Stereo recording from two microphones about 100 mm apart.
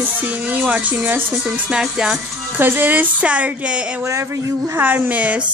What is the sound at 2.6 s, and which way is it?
Speech, 20° right (ahead or behind).